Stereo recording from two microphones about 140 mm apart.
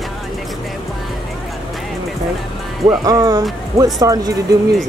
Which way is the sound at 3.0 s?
25° right (ahead or behind).